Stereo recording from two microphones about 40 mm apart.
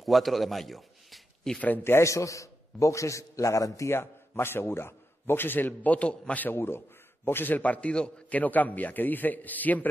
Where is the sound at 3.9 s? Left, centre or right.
Left.